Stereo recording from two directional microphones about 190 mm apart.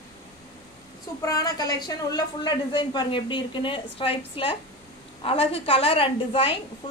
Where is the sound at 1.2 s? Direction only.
20° left (ahead or behind).